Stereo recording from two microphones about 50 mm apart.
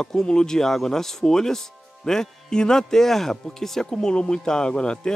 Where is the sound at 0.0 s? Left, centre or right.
Centre.